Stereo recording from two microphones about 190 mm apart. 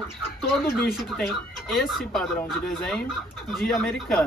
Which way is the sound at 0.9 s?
Centre (ahead or behind).